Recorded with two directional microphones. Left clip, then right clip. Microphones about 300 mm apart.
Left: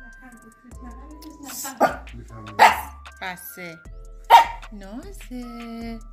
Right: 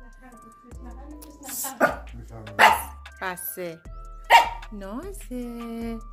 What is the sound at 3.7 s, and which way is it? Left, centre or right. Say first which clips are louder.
Music: right 2 dB; centre.